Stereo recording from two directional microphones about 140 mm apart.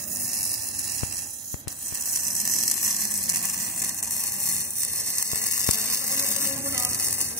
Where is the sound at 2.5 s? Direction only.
Centre (ahead or behind).